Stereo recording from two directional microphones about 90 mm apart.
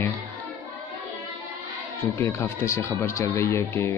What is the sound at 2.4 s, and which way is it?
Speech, 30° left (ahead or behind).